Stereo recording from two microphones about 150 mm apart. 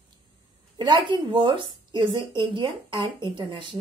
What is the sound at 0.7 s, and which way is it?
A woman's voice, 30° right (ahead or behind).